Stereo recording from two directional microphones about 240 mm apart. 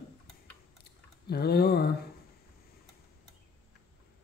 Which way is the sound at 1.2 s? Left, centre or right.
Left.